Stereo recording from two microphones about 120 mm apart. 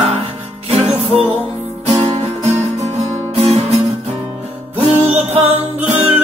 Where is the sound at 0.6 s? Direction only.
60° right (ahead or behind).